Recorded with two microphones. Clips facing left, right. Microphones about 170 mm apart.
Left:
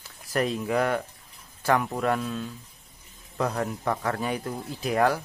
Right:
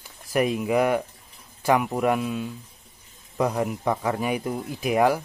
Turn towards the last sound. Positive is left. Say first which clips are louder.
# right 3 dB
turn(degrees=-10)  # may be behind; listen again after turning